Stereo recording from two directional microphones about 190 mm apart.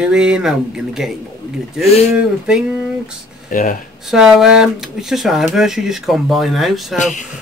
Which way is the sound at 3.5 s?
45° left (ahead or behind).